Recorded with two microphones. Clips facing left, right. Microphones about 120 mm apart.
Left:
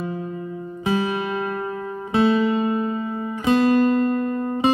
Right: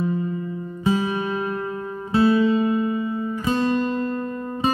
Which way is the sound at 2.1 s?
25° left (ahead or behind).